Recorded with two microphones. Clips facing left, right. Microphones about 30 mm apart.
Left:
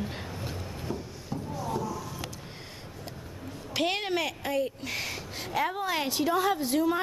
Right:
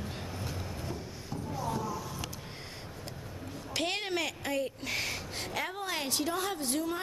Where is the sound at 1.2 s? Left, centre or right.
Centre.